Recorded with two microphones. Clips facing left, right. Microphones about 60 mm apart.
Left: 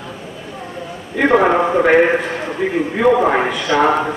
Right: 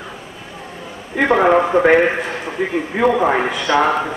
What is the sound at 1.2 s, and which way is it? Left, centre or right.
A man's voice, centre.